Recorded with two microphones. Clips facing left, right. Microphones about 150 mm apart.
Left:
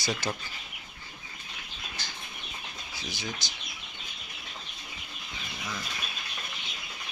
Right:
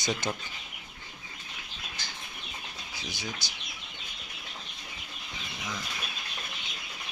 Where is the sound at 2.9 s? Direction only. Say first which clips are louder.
Left 1 dB; 15° right (ahead or behind).